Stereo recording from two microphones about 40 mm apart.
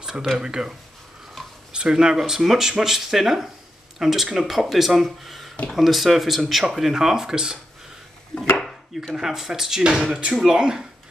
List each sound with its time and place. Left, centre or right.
0.0 s a sound: centre
0.4 s speech: centre
2.1 s speech: centre
8.4 s chopping: centre
9.1 s speech: centre